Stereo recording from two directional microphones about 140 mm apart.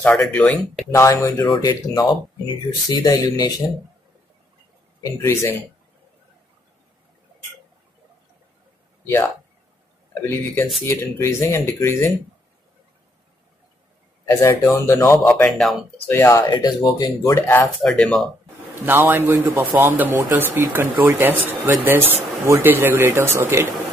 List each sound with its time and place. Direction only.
0.0 s speech: 10° left (ahead or behind)
0.9 s speech: 20° left (ahead or behind)
5.0 s speech: 20° left (ahead or behind)
10.2 s speech: 15° left (ahead or behind)
14.3 s speech: 20° left (ahead or behind)
17.4 s speech: 15° left (ahead or behind)
17.8 s speech: centre (ahead or behind)
18.9 s speech: 15° right (ahead or behind)